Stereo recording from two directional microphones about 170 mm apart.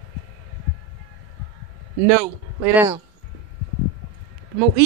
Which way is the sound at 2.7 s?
10° right (ahead or behind).